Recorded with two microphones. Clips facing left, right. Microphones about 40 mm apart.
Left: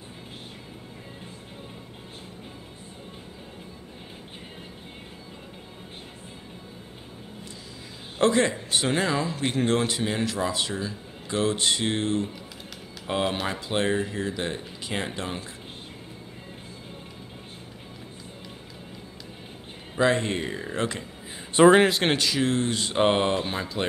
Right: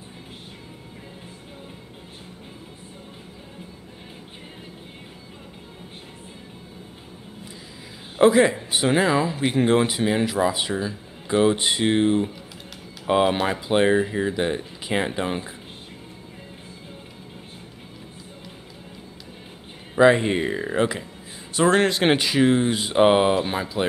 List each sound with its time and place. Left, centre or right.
8.2 s a man's voice: centre
20.0 s speech: centre
21.5 s speech: centre
22.0 s speech: centre